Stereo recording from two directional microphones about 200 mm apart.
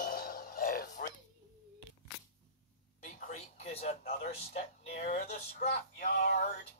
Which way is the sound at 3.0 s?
40° left (ahead or behind).